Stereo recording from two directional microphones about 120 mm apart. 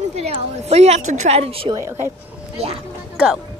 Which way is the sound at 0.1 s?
65° right (ahead or behind).